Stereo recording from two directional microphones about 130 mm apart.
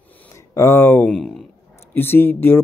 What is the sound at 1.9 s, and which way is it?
Speech, 15° left (ahead or behind).